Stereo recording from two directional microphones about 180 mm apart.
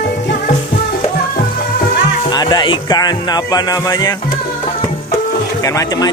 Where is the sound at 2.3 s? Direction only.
25° left (ahead or behind).